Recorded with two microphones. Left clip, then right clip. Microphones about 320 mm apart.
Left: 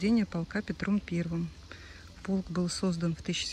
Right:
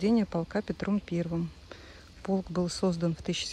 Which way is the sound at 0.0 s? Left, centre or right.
Centre.